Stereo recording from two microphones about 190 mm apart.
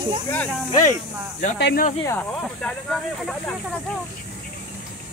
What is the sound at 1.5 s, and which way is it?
Speech, 65° left (ahead or behind).